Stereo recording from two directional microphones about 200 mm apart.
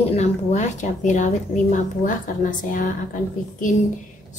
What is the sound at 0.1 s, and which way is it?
A woman's voice, 35° left (ahead or behind).